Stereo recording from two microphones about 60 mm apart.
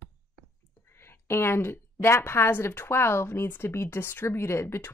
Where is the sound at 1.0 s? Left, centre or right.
Left.